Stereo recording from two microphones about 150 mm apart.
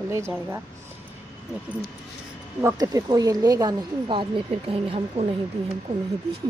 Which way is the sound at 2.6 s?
25° right (ahead or behind).